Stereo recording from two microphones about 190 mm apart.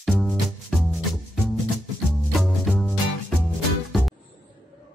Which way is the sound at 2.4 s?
Centre (ahead or behind).